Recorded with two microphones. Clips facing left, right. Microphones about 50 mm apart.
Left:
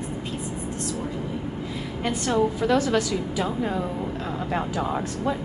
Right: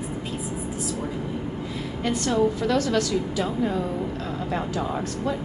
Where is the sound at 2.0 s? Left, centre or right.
Left.